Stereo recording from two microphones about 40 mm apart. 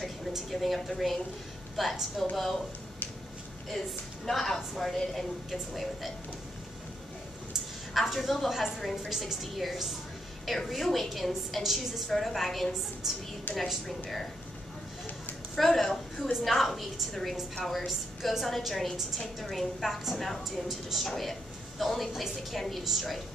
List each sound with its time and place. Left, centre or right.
0.5 s a woman's voice: centre
2.2 s speech: centre
4.3 s a woman's voice: centre
7.5 s a woman's voice: centre
13.5 s a woman's voice: left
15.5 s a woman's voice: centre
22.6 s a woman's voice: centre